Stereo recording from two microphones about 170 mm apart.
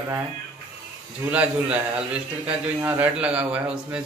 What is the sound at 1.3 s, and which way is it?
Speech, 5° right (ahead or behind).